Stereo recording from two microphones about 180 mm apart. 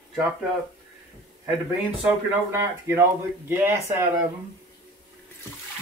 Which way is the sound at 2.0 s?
15° right (ahead or behind).